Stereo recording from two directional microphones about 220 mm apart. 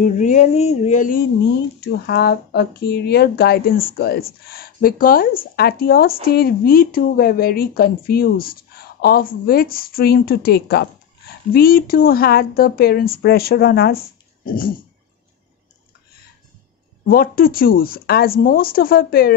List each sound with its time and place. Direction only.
0.0 s speech: 35° left (ahead or behind)
1.8 s speech: 45° left (ahead or behind)
17.1 s speech: 40° left (ahead or behind)